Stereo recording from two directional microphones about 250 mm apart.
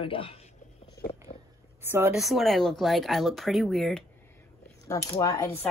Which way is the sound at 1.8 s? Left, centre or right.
Centre.